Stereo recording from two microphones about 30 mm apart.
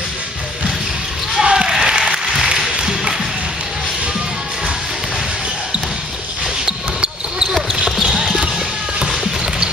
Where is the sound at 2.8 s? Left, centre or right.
Centre.